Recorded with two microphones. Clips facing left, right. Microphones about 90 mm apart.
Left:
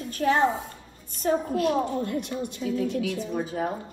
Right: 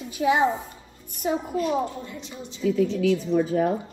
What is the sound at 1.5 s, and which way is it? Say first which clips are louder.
A woman's voice: left 1 dB; 60° left (ahead or behind).